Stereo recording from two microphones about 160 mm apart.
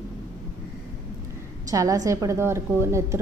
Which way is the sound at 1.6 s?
20° right (ahead or behind).